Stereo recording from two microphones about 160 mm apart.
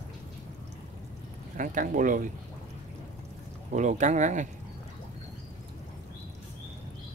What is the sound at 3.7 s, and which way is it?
Speech, 50° right (ahead or behind).